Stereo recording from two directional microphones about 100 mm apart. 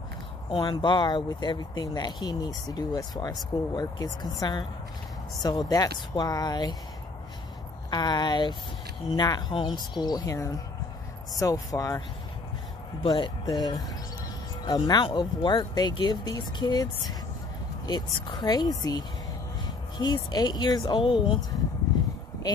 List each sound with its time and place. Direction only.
0.6 s speech: 50° left (ahead or behind)
7.9 s speech: 45° left (ahead or behind)
13.1 s speech: 40° left (ahead or behind)
21.0 s speech: 60° left (ahead or behind)